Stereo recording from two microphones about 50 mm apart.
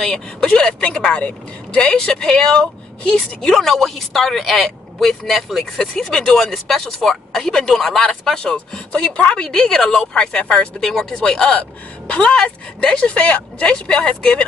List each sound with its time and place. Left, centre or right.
0.0 s speech: centre
0.5 s speech: centre
3.3 s a woman's voice: centre; by 9.5 s left
9.5 s speech: centre